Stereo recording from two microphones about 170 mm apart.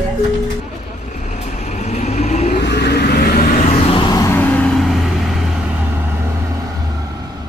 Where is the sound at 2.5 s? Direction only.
85° left.